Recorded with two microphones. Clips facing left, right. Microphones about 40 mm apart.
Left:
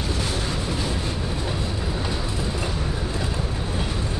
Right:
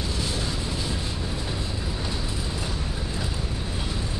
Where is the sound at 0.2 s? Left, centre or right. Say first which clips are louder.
Left 3 dB; left.